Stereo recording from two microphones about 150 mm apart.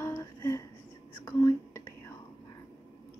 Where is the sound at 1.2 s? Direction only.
20° left (ahead or behind).